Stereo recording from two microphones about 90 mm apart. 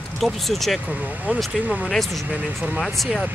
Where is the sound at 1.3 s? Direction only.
15° right (ahead or behind).